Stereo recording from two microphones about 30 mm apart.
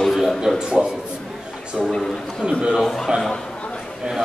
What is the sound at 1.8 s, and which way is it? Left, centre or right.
Speech, centre.